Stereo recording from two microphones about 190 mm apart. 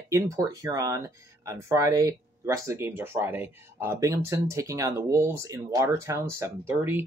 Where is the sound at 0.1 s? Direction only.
15° right (ahead or behind).